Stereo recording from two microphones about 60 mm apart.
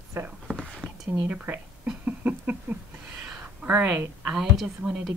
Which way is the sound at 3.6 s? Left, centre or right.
Right.